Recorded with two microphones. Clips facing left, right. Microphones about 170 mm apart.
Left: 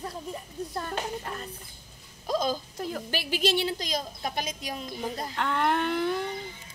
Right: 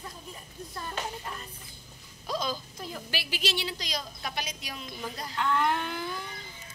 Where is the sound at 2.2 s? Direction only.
45° left (ahead or behind).